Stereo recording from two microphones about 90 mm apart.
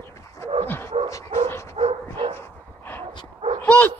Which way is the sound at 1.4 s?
30° left (ahead or behind).